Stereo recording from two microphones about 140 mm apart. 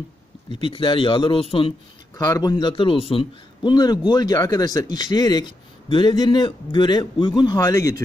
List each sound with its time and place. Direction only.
0.7 s a man's voice: 35° left (ahead or behind)
2.1 s a man's voice: 25° left (ahead or behind); by 3.7 s 40° left (ahead or behind)
3.7 s a man's voice: 30° left (ahead or behind)